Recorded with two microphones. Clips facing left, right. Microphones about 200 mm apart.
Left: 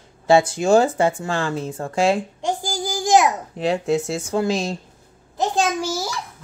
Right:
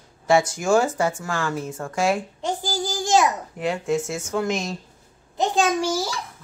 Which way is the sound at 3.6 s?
35° left (ahead or behind).